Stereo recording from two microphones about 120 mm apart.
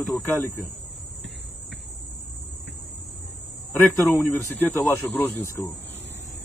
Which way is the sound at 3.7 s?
20° left (ahead or behind).